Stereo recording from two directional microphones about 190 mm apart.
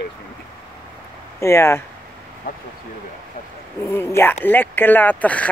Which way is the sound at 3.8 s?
15° left (ahead or behind).